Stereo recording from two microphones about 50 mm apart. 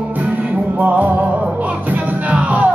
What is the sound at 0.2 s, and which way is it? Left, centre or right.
Music, right.